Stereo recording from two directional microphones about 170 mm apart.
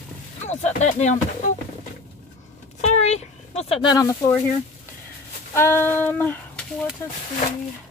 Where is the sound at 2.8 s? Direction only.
40° left (ahead or behind); by 4.3 s 20° left (ahead or behind).